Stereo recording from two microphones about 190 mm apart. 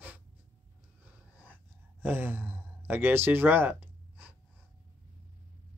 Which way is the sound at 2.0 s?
10° right (ahead or behind).